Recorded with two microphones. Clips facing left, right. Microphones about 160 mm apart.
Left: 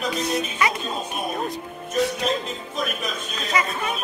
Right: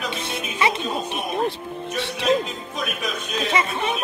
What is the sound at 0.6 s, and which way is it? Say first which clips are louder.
Speech: right 3 dB; 25° right (ahead or behind).